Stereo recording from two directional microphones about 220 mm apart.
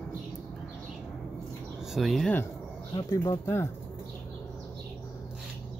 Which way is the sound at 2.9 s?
20° left (ahead or behind).